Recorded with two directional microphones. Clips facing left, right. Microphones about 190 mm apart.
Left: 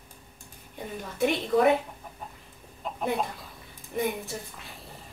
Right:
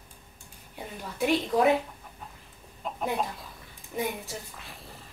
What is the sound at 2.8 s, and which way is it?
Speech, centre (ahead or behind).